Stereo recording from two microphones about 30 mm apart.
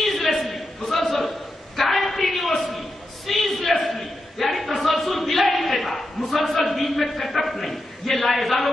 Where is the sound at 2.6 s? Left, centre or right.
Centre.